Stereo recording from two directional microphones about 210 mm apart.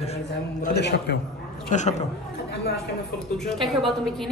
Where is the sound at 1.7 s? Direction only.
35° left (ahead or behind).